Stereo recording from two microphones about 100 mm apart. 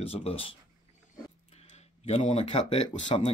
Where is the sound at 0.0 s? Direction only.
80° left.